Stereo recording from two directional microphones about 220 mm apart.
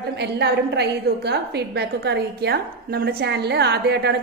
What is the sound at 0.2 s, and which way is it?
A woman's voice, 50° right (ahead or behind).